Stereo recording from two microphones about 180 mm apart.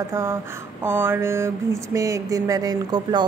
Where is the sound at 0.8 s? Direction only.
10° right (ahead or behind).